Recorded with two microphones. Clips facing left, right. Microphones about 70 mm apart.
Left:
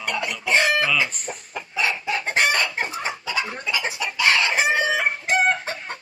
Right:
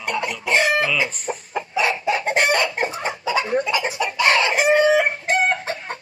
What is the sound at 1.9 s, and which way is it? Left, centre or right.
Chicken, centre.